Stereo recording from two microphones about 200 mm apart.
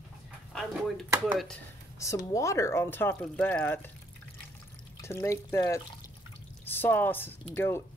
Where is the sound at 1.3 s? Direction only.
Centre (ahead or behind).